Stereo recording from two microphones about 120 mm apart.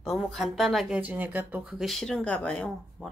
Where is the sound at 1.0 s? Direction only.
15° right (ahead or behind).